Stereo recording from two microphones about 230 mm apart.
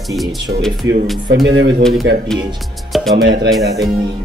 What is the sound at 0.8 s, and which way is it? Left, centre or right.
Speech, right.